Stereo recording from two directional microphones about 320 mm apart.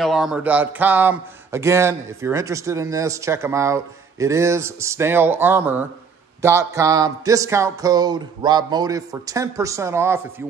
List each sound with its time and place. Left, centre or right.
0.0 s speech: centre